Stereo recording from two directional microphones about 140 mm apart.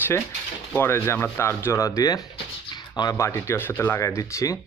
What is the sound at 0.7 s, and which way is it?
Speech, 15° left (ahead or behind).